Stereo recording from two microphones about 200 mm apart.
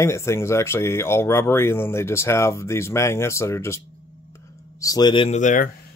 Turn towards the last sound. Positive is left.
turn(degrees=40)  # may be behind; listen again after turning